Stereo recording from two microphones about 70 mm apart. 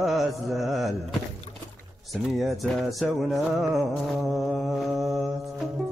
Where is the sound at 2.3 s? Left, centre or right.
Centre.